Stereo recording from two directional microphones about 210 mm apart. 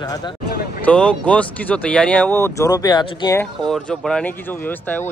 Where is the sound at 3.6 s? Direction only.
Centre (ahead or behind).